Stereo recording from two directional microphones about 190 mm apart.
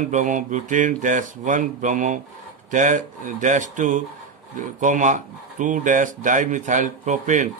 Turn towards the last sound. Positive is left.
turn(degrees=-40)  # may be behind; listen again after turning